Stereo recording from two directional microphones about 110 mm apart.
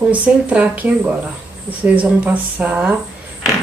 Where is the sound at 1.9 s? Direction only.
15° right (ahead or behind).